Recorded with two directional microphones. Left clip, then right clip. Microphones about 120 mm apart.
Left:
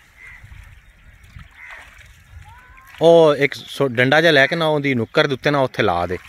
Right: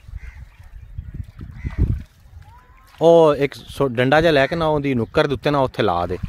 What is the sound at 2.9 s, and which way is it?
Speech, 5° right (ahead or behind).